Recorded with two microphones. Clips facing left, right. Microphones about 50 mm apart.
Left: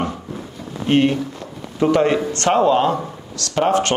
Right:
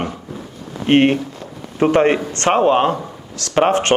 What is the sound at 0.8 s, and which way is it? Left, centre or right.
Speech, right.